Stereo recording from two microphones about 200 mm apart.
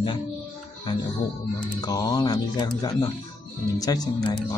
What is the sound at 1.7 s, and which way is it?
Speech, 20° left (ahead or behind).